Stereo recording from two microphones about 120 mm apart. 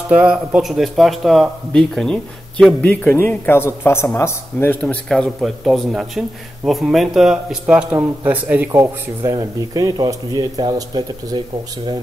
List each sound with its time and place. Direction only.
0.1 s speech: 10° right (ahead or behind); by 4.7 s 20° left (ahead or behind)
4.8 s speech: 5° left (ahead or behind); by 8.8 s 15° right (ahead or behind)
9.4 s speech: 35° right (ahead or behind)